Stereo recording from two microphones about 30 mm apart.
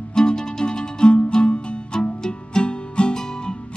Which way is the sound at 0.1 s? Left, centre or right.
Left.